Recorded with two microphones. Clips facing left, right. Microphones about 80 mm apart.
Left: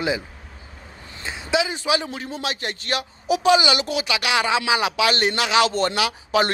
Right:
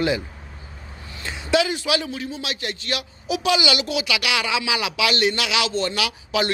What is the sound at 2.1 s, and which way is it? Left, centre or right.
A man's voice, left.